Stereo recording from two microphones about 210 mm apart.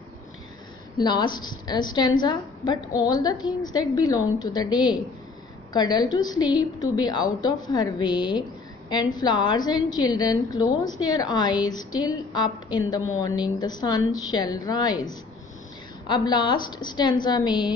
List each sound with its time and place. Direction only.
0.9 s a woman's voice: 20° left (ahead or behind)